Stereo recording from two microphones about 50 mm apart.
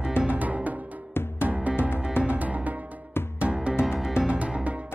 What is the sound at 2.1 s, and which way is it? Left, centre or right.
Music, right.